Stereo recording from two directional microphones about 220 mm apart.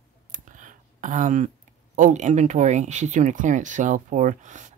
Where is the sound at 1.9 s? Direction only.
35° right (ahead or behind).